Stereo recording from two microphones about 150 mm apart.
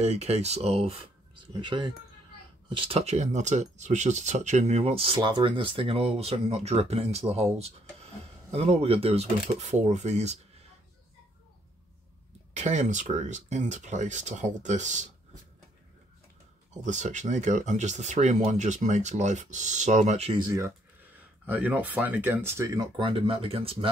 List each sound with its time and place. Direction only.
0.0 s speech: 45° right (ahead or behind)
12.5 s speech: 50° right (ahead or behind)
16.8 s speech: 50° right (ahead or behind)
20.3 s speech: 25° right (ahead or behind)
21.5 s speech: 10° right (ahead or behind)
22.8 s speech: 35° right (ahead or behind)